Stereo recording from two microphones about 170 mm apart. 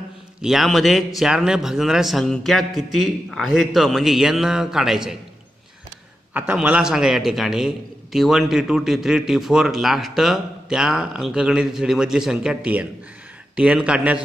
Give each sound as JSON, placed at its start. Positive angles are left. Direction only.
{"t": 0.4, "sound": "a man's voice", "side_deg": 0}
{"t": 6.3, "sound": "a man's voice", "side_deg": -10}